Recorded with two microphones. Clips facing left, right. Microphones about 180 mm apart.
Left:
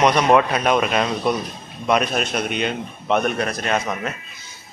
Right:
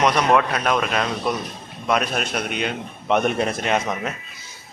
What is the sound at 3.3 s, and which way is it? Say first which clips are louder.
Speech: right 1 dB; 25° right (ahead or behind).